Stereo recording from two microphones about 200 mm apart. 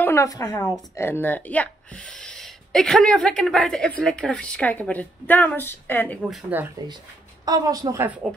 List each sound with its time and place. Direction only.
0.0 s a woman's voice: 15° left (ahead or behind)
7.4 s a woman's voice: 20° right (ahead or behind)